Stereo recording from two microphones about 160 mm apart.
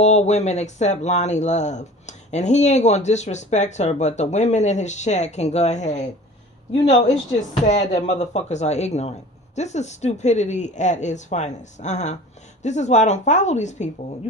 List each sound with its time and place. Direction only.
0.0 s speech: 45° left (ahead or behind)